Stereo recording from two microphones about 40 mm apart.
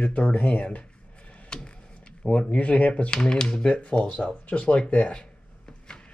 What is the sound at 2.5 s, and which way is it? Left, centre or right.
Speech, left.